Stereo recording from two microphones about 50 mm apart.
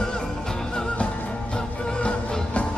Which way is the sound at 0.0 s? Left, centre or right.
Centre.